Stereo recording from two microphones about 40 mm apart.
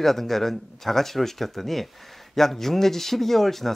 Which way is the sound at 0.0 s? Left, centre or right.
Centre.